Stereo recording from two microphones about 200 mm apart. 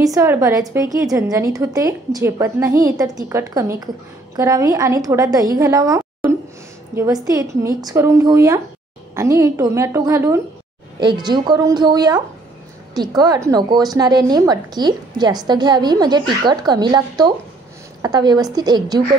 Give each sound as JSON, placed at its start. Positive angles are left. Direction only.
{"t": 0.0, "sound": "a woman's voice", "side_deg": -15}